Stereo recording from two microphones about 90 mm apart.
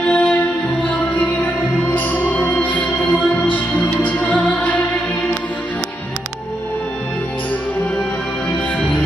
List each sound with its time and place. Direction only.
0.0 s music: 10° left (ahead or behind)